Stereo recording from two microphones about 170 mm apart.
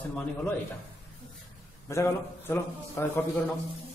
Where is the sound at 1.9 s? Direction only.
15° left (ahead or behind).